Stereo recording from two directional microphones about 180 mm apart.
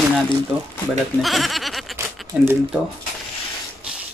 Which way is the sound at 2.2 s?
Centre (ahead or behind).